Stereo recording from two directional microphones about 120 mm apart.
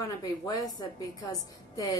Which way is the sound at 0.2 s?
35° left (ahead or behind).